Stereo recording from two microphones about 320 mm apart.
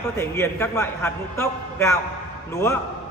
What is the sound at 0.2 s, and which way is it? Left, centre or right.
A man's voice, centre.